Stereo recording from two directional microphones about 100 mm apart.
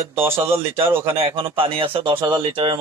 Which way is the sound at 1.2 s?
65° right (ahead or behind).